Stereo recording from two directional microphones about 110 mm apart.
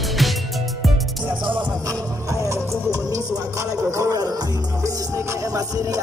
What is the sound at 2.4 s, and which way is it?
Music, 25° right (ahead or behind).